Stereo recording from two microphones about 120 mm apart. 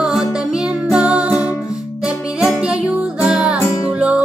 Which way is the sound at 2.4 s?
5° right (ahead or behind).